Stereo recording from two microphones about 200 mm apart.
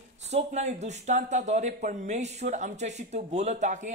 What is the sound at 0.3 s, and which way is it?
Speech, 35° right (ahead or behind).